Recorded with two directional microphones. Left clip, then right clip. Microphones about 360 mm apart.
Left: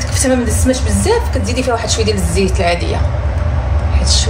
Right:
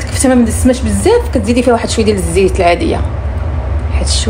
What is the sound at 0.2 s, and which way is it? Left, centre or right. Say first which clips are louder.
Speech: right 5 dB; right.